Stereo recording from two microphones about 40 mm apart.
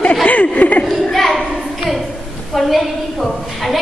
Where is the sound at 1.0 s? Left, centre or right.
Centre.